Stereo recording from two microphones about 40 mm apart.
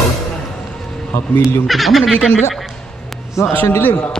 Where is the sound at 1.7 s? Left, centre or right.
Centre.